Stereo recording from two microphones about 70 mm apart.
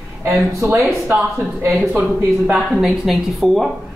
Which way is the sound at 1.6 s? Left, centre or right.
Right.